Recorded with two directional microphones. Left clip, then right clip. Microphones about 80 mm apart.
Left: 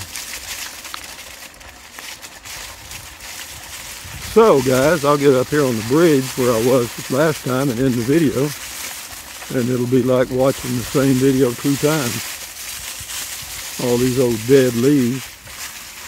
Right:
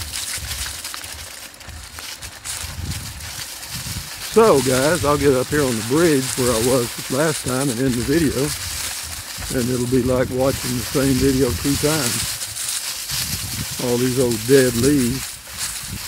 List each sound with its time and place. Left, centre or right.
4.3 s speech: centre
6.4 s speech: centre
7.1 s speech: left
9.5 s speech: centre
13.7 s speech: left